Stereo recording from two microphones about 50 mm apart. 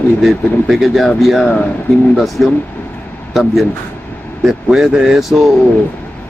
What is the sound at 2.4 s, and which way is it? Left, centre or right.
Speech, left.